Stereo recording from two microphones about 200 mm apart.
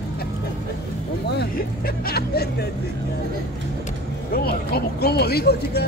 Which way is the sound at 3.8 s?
50° left (ahead or behind).